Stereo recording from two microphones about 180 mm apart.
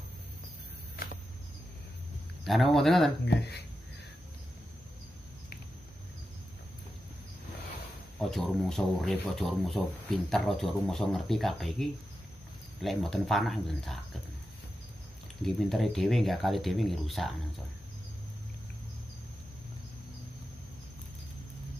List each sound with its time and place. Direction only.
2.4 s speech: centre (ahead or behind)
3.3 s speech: 65° left (ahead or behind)
8.2 s speech: centre (ahead or behind)
15.4 s speech: centre (ahead or behind)